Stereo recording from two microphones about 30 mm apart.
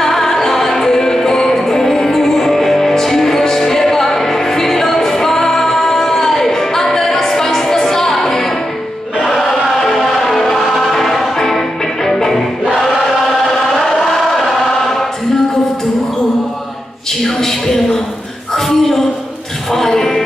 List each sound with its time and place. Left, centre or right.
0.0 s music: centre
9.9 s a sound: centre
10.9 s music: centre
13.7 s chant: centre
17.4 s a sound: centre
19.7 s music: centre